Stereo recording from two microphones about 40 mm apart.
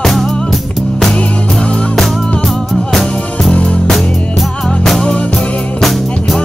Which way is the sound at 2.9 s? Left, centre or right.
Centre.